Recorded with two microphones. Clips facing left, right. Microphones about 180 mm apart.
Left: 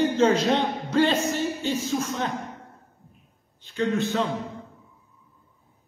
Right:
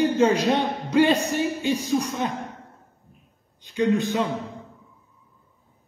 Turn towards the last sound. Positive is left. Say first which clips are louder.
# right 2 dB
turn(degrees=-15)  # may be behind; listen again after turning